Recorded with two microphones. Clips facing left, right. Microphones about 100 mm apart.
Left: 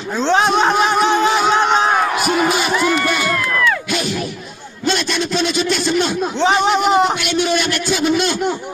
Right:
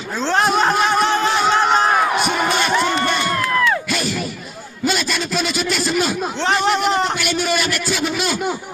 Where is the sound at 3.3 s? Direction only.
25° right (ahead or behind).